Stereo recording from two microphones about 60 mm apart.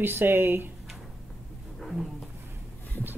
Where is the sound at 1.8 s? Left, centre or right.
Centre.